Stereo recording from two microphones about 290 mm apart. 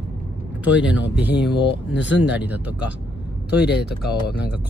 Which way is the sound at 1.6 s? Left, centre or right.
Left.